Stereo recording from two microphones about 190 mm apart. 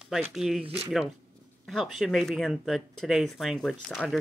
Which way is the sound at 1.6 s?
Centre (ahead or behind).